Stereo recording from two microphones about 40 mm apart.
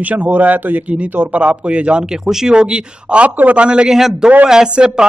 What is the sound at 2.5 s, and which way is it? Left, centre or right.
Speech, right.